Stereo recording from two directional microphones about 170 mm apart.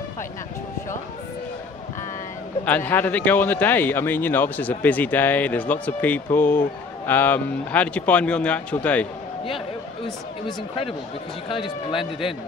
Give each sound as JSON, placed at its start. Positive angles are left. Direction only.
{"t": 2.6, "sound": "a man's voice", "side_deg": 10}
{"t": 10.4, "sound": "speech", "side_deg": 35}